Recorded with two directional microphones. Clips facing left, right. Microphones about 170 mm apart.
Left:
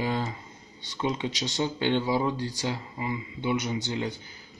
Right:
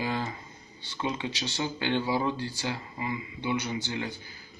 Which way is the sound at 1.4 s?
20° left (ahead or behind).